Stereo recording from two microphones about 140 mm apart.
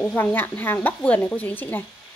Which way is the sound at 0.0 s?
15° left (ahead or behind).